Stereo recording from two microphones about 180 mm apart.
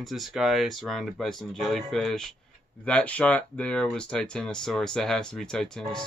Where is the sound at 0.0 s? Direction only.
Centre (ahead or behind).